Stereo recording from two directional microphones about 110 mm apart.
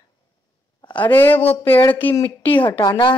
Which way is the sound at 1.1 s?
20° left (ahead or behind).